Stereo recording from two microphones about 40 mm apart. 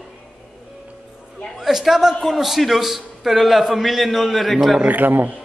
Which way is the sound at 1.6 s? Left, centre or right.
Centre.